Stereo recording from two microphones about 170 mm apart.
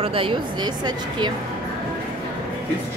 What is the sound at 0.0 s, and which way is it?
A woman's voice, 30° right (ahead or behind).